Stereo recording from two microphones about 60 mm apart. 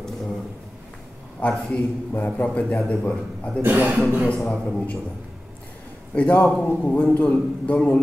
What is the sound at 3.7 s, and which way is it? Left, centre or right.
Speech, right.